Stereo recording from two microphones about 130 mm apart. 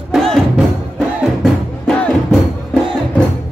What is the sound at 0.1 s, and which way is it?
Music, centre (ahead or behind).